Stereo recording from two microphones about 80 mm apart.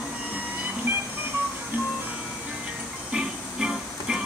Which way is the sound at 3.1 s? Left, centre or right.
Centre.